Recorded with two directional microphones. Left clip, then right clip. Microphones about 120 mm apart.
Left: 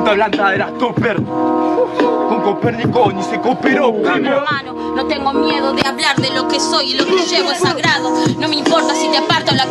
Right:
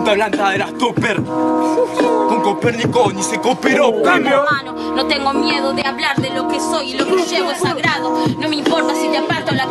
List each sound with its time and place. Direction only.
0.0 s speech: 15° right (ahead or behind)
2.4 s speech: 10° right (ahead or behind)
5.2 s music: centre (ahead or behind)
7.3 s speech: 5° right (ahead or behind)